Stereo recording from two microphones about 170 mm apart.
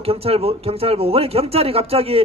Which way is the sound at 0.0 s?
35° right (ahead or behind).